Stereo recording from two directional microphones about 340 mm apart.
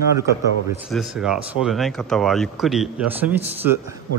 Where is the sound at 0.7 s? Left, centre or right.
Centre.